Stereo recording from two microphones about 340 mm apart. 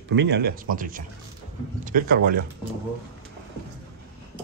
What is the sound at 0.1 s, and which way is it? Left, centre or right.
Speech, right.